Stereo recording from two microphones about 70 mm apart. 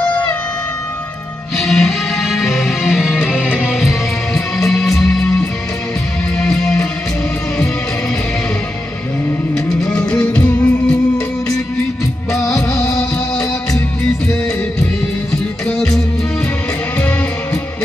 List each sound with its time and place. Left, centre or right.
0.0 s music: centre
1.6 s music: centre
9.7 s music: centre
12.7 s music: centre
15.6 s music: centre